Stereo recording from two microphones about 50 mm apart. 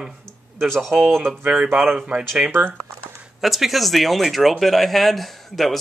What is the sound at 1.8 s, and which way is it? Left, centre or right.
Speech, centre.